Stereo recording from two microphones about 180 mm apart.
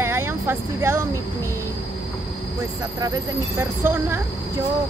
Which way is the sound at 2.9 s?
20° right (ahead or behind).